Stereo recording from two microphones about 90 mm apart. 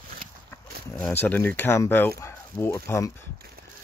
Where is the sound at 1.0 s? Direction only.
20° left (ahead or behind).